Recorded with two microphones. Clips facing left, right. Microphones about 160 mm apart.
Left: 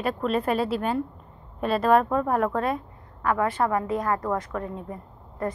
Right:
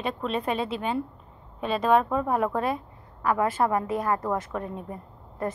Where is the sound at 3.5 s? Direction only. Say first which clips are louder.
Even; 15° right (ahead or behind).